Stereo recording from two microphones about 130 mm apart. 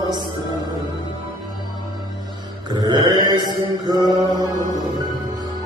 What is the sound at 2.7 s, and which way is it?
Mantra, 35° right (ahead or behind).